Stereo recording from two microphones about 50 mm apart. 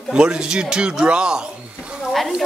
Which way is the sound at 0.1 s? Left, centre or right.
Centre.